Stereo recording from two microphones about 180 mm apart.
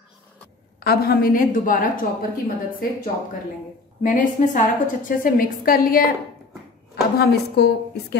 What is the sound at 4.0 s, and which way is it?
A woman's voice, 45° left (ahead or behind).